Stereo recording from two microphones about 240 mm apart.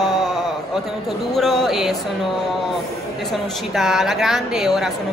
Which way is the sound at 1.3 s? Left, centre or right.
Centre.